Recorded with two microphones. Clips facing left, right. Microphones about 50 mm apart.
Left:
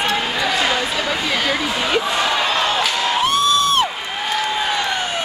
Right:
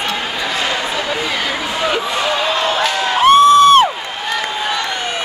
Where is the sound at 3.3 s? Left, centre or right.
Right.